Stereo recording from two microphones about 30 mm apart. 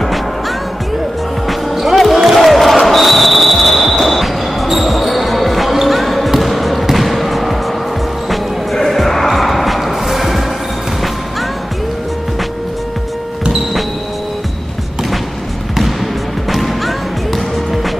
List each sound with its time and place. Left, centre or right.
1.5 s music: centre
2.3 s basketball bounce: centre
8.3 s music: centre
16.4 s music: centre